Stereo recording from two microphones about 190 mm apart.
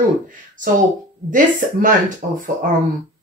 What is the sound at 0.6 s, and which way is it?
Speech, 45° right (ahead or behind).